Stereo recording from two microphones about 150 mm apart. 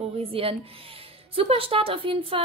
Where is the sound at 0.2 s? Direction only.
40° right (ahead or behind).